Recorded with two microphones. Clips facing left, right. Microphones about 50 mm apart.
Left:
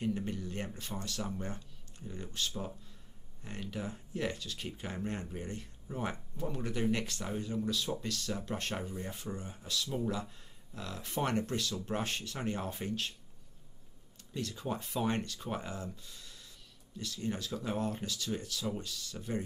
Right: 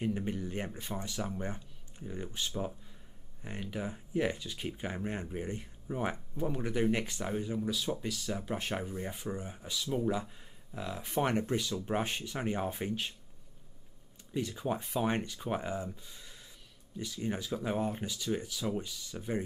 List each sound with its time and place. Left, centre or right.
0.0 s speech: centre
14.3 s speech: centre